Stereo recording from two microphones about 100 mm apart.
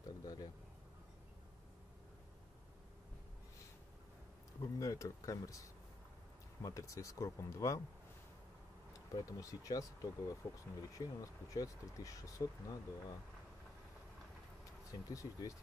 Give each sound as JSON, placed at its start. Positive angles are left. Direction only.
{"t": 0.2, "sound": "a sound", "side_deg": 40}
{"t": 4.6, "sound": "speech", "side_deg": 35}
{"t": 9.1, "sound": "speech", "side_deg": 35}
{"t": 14.9, "sound": "speech", "side_deg": 35}